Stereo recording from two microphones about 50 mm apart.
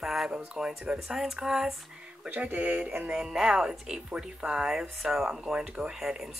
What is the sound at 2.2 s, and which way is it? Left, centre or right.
Speech, right.